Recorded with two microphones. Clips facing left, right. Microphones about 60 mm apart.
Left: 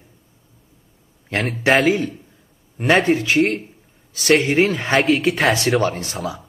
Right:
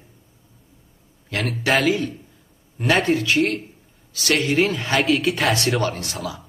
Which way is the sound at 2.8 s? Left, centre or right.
Left.